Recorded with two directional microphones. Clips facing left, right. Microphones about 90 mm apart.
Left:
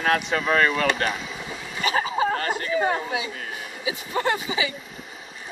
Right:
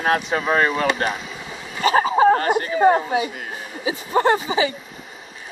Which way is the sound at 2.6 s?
30° right (ahead or behind).